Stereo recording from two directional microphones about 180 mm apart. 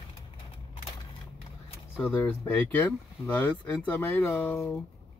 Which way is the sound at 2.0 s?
10° left (ahead or behind).